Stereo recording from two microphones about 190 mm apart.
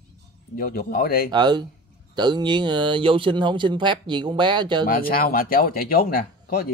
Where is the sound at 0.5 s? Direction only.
50° left (ahead or behind).